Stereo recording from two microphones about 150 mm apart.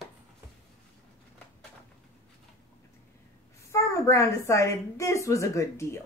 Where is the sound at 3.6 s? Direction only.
20° left (ahead or behind).